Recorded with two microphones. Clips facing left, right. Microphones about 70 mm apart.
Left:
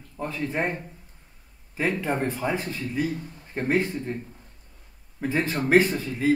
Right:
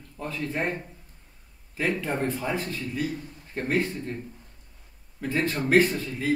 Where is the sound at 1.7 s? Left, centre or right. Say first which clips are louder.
Left 2 dB; centre.